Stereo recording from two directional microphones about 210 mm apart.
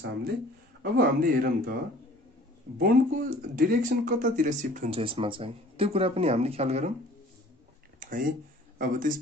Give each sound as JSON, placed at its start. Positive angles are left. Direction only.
{"t": 0.9, "sound": "speech", "side_deg": -45}
{"t": 2.8, "sound": "speech", "side_deg": -45}
{"t": 8.0, "sound": "speech", "side_deg": -40}